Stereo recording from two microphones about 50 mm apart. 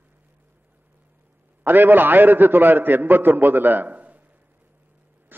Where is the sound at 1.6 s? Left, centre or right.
Right.